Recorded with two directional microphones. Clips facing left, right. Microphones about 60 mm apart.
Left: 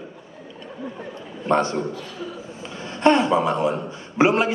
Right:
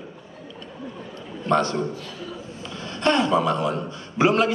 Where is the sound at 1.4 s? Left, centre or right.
Left.